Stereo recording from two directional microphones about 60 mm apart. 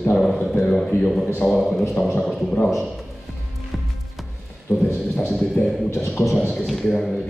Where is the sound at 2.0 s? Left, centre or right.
Left.